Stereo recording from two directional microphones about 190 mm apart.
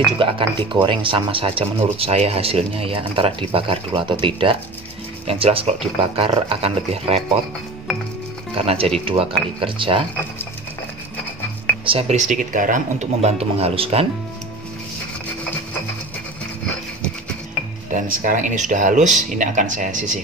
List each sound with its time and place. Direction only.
0.2 s speech: 25° right (ahead or behind)
8.6 s speech: 30° right (ahead or behind)
11.8 s speech: 30° right (ahead or behind)
17.9 s speech: 45° right (ahead or behind)